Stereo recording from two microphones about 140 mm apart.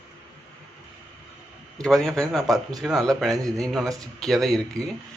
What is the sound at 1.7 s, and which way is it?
Speech, 5° left (ahead or behind).